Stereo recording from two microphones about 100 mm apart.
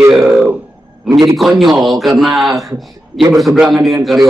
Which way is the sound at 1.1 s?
40° right (ahead or behind).